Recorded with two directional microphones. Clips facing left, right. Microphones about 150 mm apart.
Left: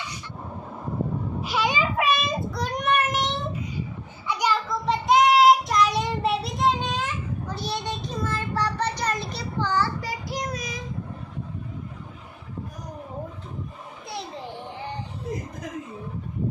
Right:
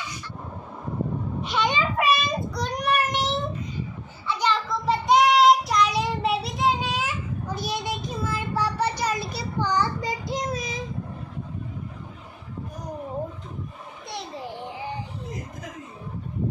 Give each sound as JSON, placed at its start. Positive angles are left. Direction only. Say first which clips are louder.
{"t": 1.4, "sound": "child singing", "louder": "even", "side_deg": 5}
{"t": 4.3, "sound": "children playing", "louder": "even", "side_deg": 10}
{"t": 4.6, "sound": "child singing", "louder": "right 1 dB", "side_deg": 0}